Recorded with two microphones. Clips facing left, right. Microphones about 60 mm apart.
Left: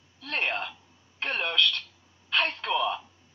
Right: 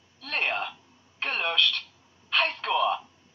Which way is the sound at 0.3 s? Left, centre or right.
Centre.